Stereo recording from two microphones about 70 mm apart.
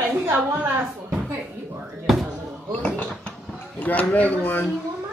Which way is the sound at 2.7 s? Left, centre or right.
Left.